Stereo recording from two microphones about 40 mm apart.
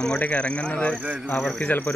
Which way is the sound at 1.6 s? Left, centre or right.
Left.